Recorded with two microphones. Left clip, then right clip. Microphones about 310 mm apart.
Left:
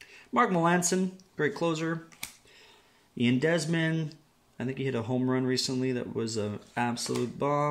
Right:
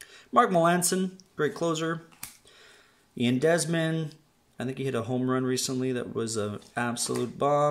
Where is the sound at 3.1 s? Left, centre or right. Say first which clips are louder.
Right 3 dB; centre.